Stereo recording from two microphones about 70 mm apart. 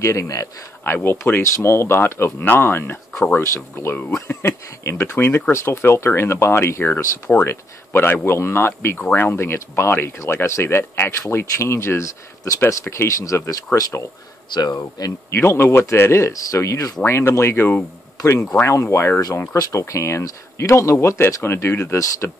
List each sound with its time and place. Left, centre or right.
0.0 s speech: left
0.8 s speech: left
3.5 s speech: left
14.5 s speech: left
15.3 s speech: left
17.0 s speech: left